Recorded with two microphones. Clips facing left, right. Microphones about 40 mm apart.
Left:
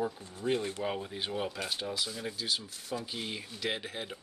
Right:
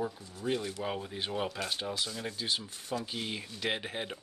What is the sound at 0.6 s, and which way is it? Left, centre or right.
Speech, left.